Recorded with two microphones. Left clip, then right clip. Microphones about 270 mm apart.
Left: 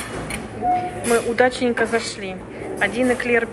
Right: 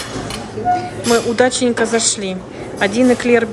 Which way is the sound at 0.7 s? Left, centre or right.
Centre.